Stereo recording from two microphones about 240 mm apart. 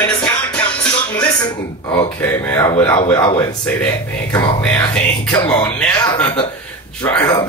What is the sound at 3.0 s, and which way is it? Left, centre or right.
Speech, left.